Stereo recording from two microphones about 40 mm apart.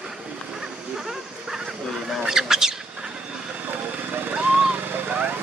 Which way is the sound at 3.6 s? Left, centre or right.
Right.